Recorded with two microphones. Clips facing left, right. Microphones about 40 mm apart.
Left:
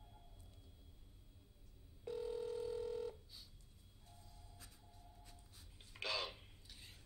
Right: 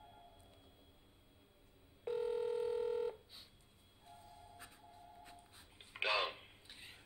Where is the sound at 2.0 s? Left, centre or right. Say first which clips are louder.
Right 6 dB; right.